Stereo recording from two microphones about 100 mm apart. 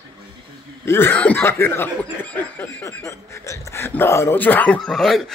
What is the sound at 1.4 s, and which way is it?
Snicker, 25° left (ahead or behind).